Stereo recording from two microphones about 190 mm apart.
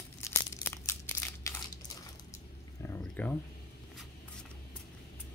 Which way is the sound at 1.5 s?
15° left (ahead or behind).